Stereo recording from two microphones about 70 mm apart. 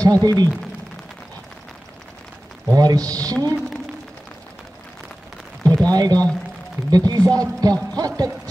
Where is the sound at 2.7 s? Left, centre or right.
Right.